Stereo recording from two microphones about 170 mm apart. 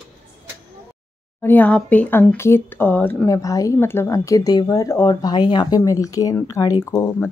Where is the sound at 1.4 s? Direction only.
10° left (ahead or behind).